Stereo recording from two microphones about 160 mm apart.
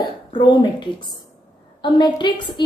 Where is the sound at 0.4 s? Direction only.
30° left (ahead or behind).